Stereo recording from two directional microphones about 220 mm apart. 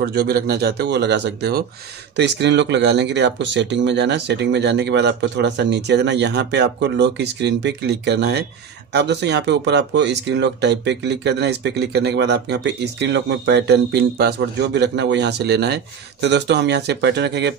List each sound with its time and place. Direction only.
0.0 s speech: 45° right (ahead or behind)